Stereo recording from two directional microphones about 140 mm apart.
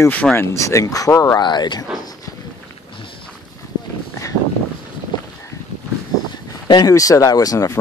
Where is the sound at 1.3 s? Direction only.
30° left (ahead or behind).